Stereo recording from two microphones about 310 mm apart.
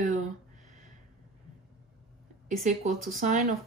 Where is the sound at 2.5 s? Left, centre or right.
Right.